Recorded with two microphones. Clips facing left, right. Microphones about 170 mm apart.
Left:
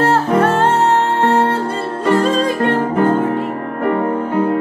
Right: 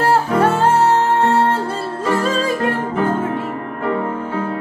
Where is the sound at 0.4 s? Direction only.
10° right (ahead or behind).